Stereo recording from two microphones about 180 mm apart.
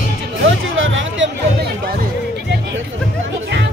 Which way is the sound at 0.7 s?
90° right.